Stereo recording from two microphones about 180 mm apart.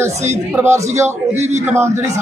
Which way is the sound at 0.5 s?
10° right (ahead or behind).